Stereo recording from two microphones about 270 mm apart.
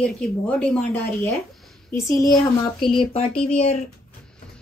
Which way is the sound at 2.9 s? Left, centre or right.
Centre.